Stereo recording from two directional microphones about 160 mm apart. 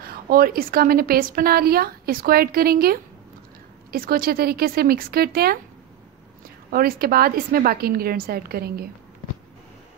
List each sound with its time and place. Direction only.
0.3 s a woman's voice: 65° right (ahead or behind)
6.7 s a woman's voice: 65° right (ahead or behind)